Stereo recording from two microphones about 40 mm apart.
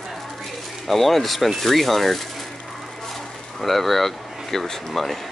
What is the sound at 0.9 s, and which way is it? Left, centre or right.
Speech, centre.